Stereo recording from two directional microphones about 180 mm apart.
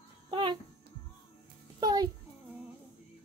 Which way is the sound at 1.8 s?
20° right (ahead or behind).